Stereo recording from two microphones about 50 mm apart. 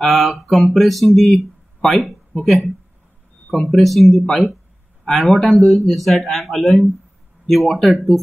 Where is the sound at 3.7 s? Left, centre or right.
Centre.